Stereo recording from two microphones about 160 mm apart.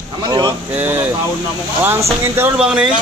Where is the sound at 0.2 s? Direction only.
25° right (ahead or behind).